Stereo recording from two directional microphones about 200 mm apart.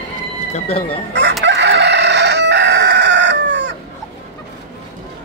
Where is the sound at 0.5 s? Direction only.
30° left (ahead or behind).